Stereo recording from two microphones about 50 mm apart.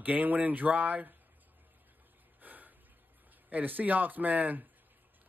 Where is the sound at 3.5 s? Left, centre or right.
Right.